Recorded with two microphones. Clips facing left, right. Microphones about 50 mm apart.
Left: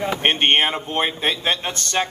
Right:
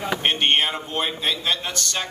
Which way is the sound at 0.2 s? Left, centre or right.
Left.